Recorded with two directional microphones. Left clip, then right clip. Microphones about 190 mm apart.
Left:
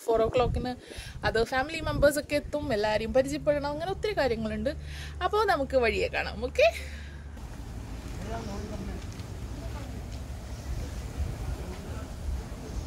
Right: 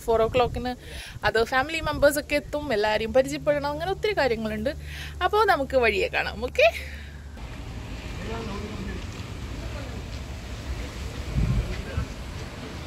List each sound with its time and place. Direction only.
0.0 s speech: 5° left (ahead or behind)